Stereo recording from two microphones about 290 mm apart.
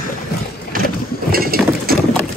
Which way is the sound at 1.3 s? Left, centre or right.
Right.